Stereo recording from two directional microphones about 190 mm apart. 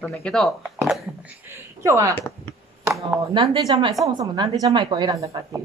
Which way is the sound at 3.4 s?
25° right (ahead or behind).